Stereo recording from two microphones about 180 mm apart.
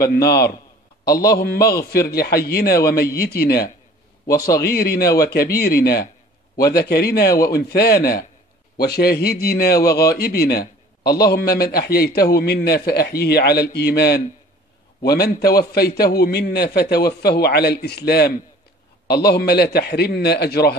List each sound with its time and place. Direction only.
0.0 s a man's voice: 60° left (ahead or behind)